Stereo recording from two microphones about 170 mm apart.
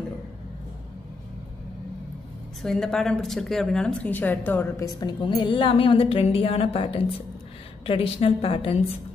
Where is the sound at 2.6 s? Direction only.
Centre (ahead or behind); by 8.8 s 35° left (ahead or behind).